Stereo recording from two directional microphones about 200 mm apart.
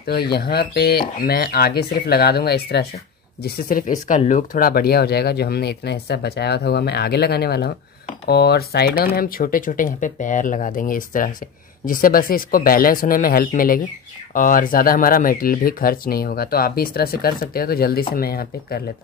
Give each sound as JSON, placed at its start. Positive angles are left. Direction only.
{"t": 0.0, "sound": "speech", "side_deg": 55}